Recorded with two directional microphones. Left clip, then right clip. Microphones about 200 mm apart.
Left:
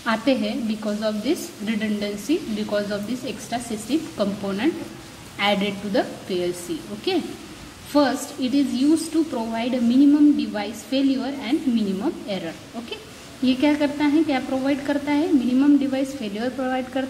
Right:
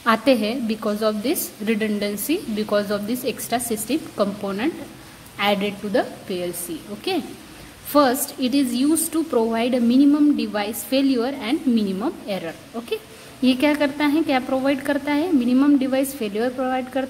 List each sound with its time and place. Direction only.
0.0 s a woman's voice: 25° right (ahead or behind)